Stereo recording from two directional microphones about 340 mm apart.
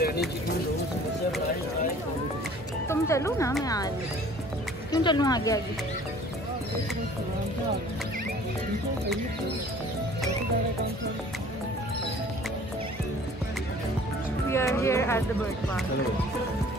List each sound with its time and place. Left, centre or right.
0.0 s a sound: left
2.9 s speech: centre
4.9 s speech: centre
14.5 s speech: centre